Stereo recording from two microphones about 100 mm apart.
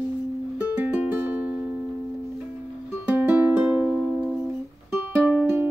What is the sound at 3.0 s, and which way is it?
Music, 15° right (ahead or behind).